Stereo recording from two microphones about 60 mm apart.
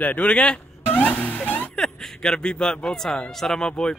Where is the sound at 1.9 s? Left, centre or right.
Centre.